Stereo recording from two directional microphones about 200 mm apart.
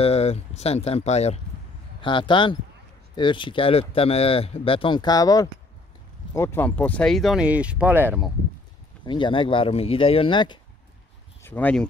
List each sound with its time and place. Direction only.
0.0 s speech: 30° left (ahead or behind); by 8.3 s 10° right (ahead or behind)
9.0 s speech: 25° left (ahead or behind)
11.4 s speech: 10° left (ahead or behind)